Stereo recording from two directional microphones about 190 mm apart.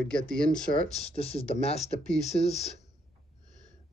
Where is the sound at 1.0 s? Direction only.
30° left (ahead or behind).